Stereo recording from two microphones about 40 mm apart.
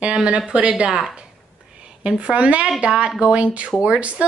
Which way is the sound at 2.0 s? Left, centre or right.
Right.